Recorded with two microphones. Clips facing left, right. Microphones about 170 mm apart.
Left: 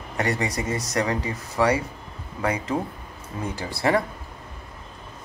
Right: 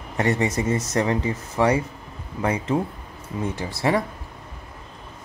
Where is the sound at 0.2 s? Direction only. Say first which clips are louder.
Right 4 dB; 25° right (ahead or behind).